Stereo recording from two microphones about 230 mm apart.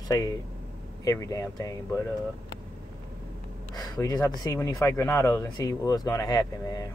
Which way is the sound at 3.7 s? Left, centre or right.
Centre.